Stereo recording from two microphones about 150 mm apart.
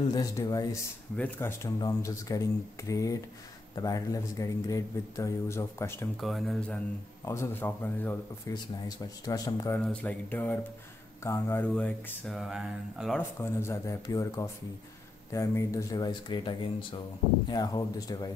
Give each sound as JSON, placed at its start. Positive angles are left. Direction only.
{"t": 0.1, "sound": "speech", "side_deg": 25}
{"t": 1.1, "sound": "speech", "side_deg": 15}
{"t": 6.2, "sound": "speech", "side_deg": 0}
{"t": 7.2, "sound": "speech", "side_deg": 20}
{"t": 9.8, "sound": "speech", "side_deg": 10}
{"t": 12.4, "sound": "speech", "side_deg": -5}
{"t": 13.2, "sound": "speech", "side_deg": 15}